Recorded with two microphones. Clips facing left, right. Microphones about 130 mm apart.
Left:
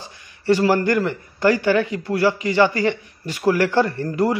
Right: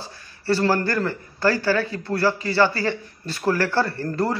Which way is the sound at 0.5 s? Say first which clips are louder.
Left 4 dB; 15° left (ahead or behind).